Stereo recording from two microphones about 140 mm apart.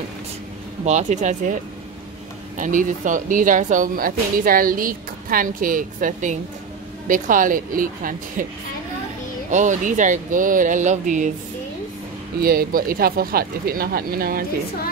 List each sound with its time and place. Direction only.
0.8 s speech: 55° right (ahead or behind); by 8.5 s 75° right (ahead or behind)
9.5 s speech: 60° right (ahead or behind)
12.4 s speech: 90° right